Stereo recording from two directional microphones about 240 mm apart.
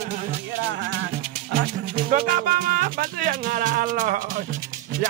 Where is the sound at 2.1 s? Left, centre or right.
Right.